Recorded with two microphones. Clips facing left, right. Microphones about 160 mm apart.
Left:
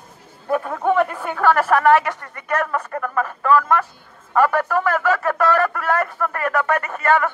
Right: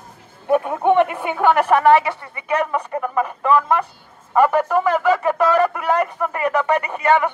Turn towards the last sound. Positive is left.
turn(degrees=-15)  # may be behind; listen again after turning